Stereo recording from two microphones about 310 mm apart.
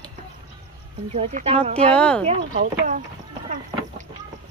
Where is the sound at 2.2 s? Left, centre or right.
Right.